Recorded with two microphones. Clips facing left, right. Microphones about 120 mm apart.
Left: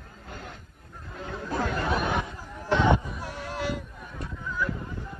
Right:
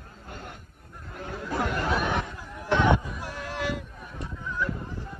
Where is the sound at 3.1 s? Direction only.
35° left (ahead or behind).